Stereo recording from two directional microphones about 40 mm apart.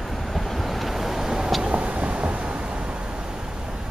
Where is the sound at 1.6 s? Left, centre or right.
Right.